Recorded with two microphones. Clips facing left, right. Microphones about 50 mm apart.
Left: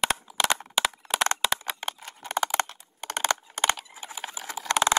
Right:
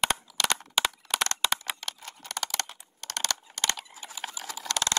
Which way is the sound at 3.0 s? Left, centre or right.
Left.